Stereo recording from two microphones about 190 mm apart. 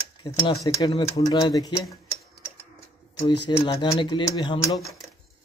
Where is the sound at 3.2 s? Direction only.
30° left (ahead or behind).